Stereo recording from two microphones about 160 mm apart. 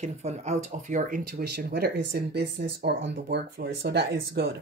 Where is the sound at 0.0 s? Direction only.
45° right (ahead or behind).